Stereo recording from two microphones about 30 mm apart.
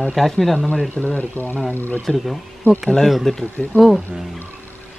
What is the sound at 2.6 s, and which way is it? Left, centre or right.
Speech, left.